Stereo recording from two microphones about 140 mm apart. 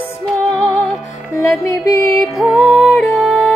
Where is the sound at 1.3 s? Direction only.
20° left (ahead or behind).